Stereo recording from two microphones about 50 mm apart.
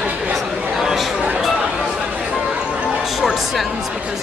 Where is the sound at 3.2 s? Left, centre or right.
Centre.